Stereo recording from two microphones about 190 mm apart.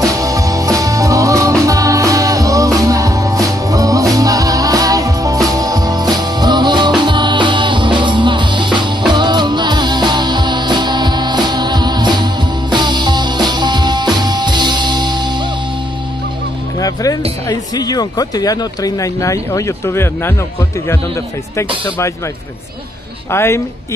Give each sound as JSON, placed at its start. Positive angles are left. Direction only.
{"t": 0.0, "sound": "music", "side_deg": -15}
{"t": 16.8, "sound": "music", "side_deg": 20}
{"t": 17.5, "sound": "speech", "side_deg": 20}
{"t": 23.3, "sound": "a woman's voice", "side_deg": 15}